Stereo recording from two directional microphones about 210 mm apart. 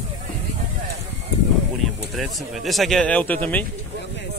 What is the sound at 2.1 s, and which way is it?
Speech, centre (ahead or behind).